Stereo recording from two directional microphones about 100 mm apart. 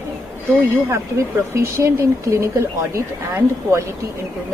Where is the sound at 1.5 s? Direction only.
30° right (ahead or behind).